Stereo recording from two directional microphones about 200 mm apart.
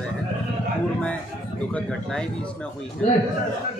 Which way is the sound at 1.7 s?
5° left (ahead or behind).